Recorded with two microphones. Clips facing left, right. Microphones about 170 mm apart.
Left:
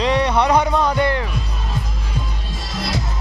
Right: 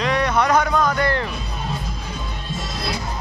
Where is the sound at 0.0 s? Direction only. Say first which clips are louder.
Left 2 dB; 30° left (ahead or behind).